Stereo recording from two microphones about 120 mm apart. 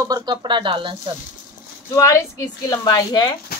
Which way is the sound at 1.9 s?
25° left (ahead or behind).